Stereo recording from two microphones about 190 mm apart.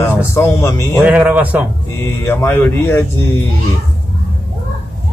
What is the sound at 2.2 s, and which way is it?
Speech, 10° left (ahead or behind).